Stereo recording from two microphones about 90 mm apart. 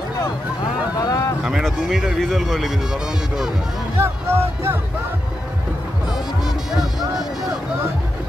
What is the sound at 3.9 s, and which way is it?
Speech, 30° right (ahead or behind).